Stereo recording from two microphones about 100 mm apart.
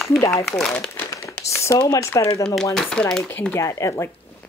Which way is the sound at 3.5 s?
30° left (ahead or behind).